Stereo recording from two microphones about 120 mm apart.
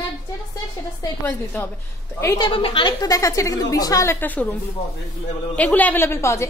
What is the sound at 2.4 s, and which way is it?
Speech, 45° left (ahead or behind).